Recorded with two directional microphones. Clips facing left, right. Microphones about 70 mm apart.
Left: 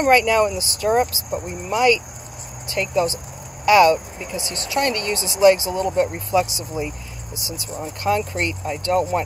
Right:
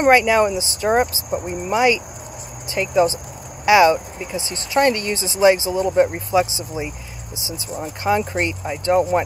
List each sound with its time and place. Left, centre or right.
0.1 s speech: centre